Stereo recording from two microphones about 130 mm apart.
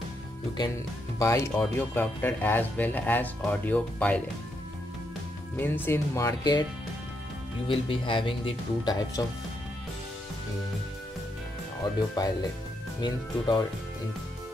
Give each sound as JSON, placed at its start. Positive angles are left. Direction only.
{"t": 1.2, "sound": "speech", "side_deg": 20}
{"t": 5.6, "sound": "speech", "side_deg": 15}
{"t": 7.6, "sound": "speech", "side_deg": 40}
{"t": 11.8, "sound": "speech", "side_deg": 35}
{"t": 13.0, "sound": "speech", "side_deg": 35}